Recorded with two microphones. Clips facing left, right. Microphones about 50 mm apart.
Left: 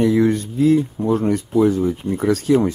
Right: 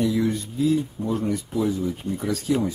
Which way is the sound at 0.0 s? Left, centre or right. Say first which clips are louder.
Left 7 dB; left.